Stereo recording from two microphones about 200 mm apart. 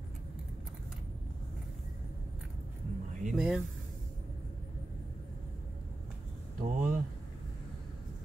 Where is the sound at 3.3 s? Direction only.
5° right (ahead or behind).